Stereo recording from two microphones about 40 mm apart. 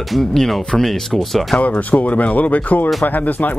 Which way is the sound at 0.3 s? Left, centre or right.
Centre.